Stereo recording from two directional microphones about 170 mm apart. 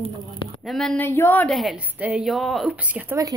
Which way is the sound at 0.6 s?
5° left (ahead or behind).